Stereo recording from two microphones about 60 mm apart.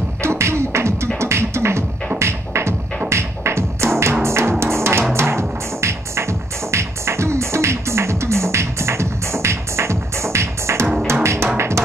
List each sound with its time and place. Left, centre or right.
0.2 s beatboxing: right
2.1 s music: right